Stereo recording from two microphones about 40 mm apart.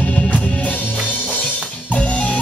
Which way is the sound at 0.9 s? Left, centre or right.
Right.